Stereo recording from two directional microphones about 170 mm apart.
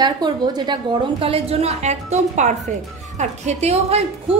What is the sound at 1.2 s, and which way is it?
A woman's voice, 35° right (ahead or behind).